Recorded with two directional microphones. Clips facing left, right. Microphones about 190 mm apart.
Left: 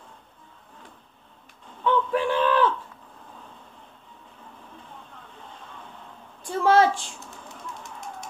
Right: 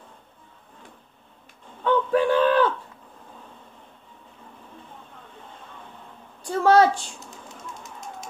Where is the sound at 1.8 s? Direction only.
45° right (ahead or behind).